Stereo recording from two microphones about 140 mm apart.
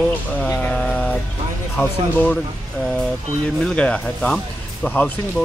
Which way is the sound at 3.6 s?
10° left (ahead or behind).